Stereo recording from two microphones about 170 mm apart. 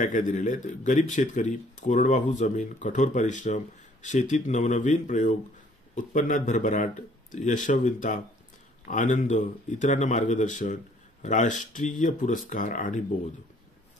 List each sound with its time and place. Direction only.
0.0 s speech: 50° left (ahead or behind)